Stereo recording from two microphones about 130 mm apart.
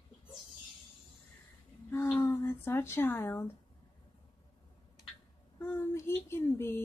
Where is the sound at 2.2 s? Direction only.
20° left (ahead or behind).